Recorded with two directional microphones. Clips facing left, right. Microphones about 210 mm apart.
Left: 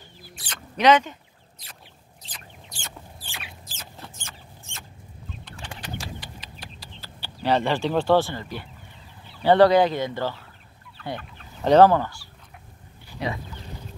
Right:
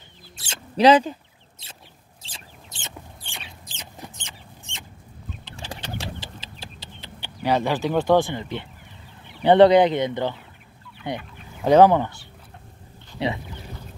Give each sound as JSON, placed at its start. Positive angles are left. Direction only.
{"t": 0.2, "sound": "rodents", "side_deg": -30}
{"t": 1.6, "sound": "a sound", "side_deg": -25}
{"t": 2.2, "sound": "rodents", "side_deg": -25}
{"t": 3.3, "sound": "rodents", "side_deg": 5}
{"t": 3.7, "sound": "rodents", "side_deg": -15}
{"t": 9.4, "sound": "speech", "side_deg": -20}
{"t": 11.0, "sound": "fowl", "side_deg": -15}
{"t": 13.2, "sound": "speech", "side_deg": -25}